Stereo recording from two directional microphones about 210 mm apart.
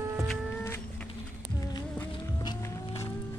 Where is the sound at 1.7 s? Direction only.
20° left (ahead or behind).